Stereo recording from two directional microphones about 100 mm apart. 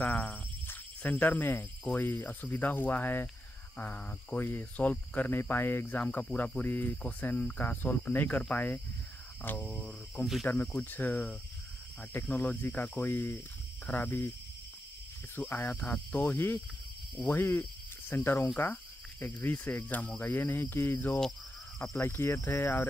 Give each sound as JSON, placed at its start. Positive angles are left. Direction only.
{"t": 0.0, "sound": "cricket", "side_deg": 15}
{"t": 1.9, "sound": "speech", "side_deg": 20}
{"t": 3.7, "sound": "cricket", "side_deg": 15}
{"t": 12.1, "sound": "speech", "side_deg": 20}
{"t": 15.3, "sound": "cricket", "side_deg": 20}
{"t": 17.3, "sound": "speech", "side_deg": 20}
{"t": 18.6, "sound": "cricket", "side_deg": 20}
{"t": 21.9, "sound": "speech", "side_deg": 25}